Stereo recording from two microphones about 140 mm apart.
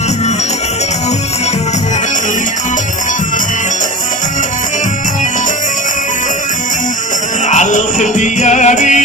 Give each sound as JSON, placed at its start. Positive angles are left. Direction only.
{"t": 7.4, "sound": "music", "side_deg": 60}